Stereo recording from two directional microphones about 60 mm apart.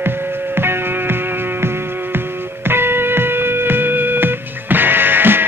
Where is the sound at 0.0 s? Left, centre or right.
Right.